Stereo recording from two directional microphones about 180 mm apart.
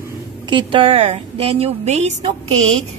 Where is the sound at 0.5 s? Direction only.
30° right (ahead or behind).